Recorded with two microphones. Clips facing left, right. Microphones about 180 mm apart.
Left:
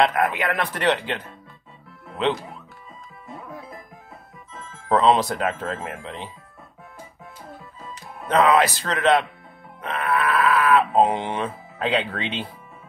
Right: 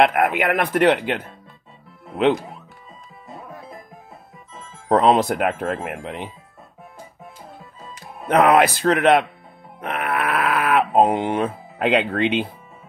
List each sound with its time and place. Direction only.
0.0 s speech: 55° right (ahead or behind)
4.8 s speech: 50° right (ahead or behind)
8.3 s speech: 55° right (ahead or behind)
9.8 s grunt: 60° right (ahead or behind)
11.0 s speech: 50° right (ahead or behind)